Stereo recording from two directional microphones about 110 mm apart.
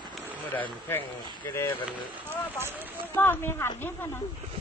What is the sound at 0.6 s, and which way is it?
Speech, 15° left (ahead or behind).